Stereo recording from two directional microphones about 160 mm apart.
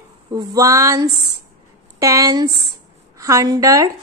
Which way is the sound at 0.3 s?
25° right (ahead or behind).